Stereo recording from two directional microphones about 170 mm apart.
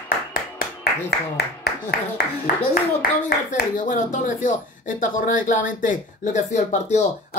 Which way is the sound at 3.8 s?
50° left (ahead or behind).